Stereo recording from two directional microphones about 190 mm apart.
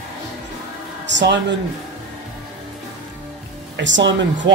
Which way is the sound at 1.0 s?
70° right (ahead or behind).